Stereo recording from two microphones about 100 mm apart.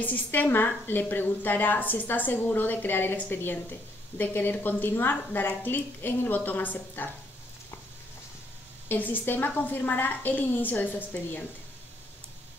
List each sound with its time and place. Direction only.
0.0 s a woman's voice: 15° left (ahead or behind)
8.8 s a woman's voice: 20° left (ahead or behind)